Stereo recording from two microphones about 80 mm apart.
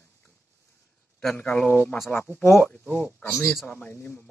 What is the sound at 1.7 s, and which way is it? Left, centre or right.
Speech, centre.